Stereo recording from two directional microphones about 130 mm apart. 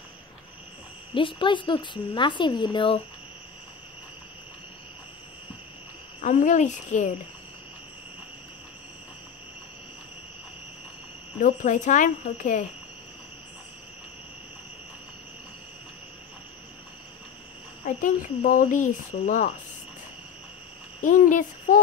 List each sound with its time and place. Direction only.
1.1 s speech: 40° left (ahead or behind)
6.2 s speech: 70° left (ahead or behind)
11.4 s speech: 70° left (ahead or behind)
17.8 s speech: 90° left; by 19.5 s 70° left (ahead or behind)
21.0 s a child's voice: 85° left